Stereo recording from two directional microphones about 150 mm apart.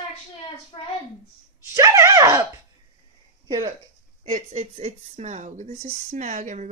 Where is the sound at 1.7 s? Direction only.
20° right (ahead or behind).